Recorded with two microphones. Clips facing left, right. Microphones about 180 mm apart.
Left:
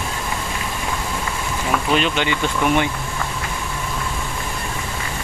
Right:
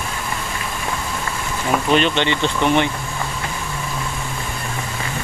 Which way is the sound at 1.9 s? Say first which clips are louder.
Right 3 dB; 5° left (ahead or behind).